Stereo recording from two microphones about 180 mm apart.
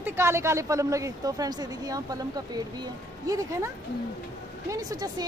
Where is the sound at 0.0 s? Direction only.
15° right (ahead or behind).